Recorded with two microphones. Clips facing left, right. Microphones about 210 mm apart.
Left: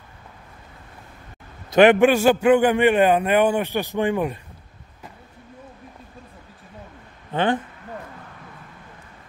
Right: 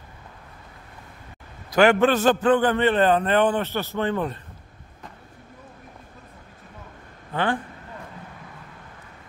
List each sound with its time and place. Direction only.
1.7 s a man's voice: 20° left (ahead or behind)
7.3 s speech: 20° left (ahead or behind)